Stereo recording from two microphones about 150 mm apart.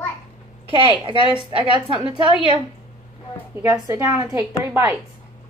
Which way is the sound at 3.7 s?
20° right (ahead or behind).